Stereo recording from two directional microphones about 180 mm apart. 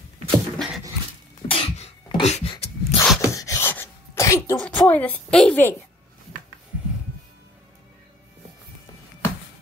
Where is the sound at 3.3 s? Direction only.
15° left (ahead or behind).